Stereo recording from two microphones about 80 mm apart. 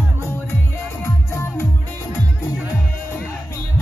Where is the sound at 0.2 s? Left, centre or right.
Left.